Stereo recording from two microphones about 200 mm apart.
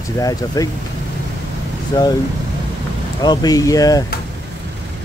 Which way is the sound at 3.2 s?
20° left (ahead or behind).